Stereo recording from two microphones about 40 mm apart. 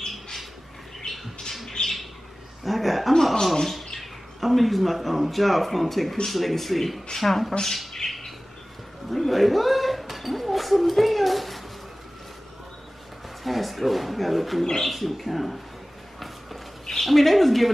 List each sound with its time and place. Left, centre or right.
1.0 s bird: centre
2.6 s speech: centre
7.9 s bird: centre
9.1 s a sound: centre
13.4 s speech: centre
17.0 s speech: centre